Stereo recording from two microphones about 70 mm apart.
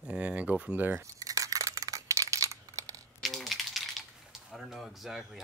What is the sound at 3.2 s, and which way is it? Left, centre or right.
Typing, centre.